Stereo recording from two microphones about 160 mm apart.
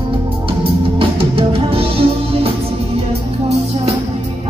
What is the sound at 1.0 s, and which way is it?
Music, 35° right (ahead or behind).